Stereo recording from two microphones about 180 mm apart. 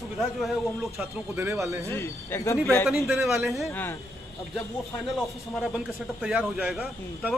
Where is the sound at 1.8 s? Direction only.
15° left (ahead or behind).